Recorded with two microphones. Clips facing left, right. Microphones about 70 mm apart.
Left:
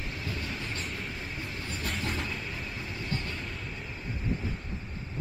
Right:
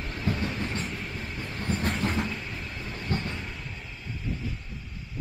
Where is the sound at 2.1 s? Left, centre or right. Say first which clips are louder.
Right 4 dB; centre.